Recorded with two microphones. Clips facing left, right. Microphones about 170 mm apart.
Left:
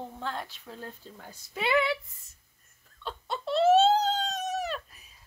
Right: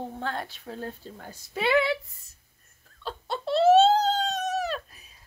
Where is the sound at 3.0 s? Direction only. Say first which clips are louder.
Right 3 dB; 30° right (ahead or behind).